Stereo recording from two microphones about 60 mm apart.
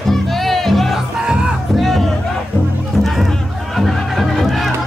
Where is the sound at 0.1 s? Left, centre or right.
Centre.